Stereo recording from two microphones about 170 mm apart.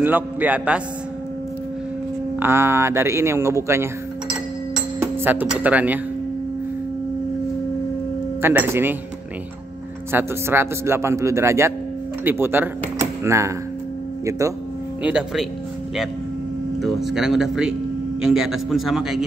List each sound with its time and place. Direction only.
0.0 s a man's voice: 10° right (ahead or behind)
2.4 s a man's voice: 15° right (ahead or behind)
5.0 s speech: 10° right (ahead or behind)
8.4 s a man's voice: 15° right (ahead or behind)
10.1 s a man's voice: 15° right (ahead or behind)
15.0 s a man's voice: 5° right (ahead or behind)
16.8 s a man's voice: centre (ahead or behind)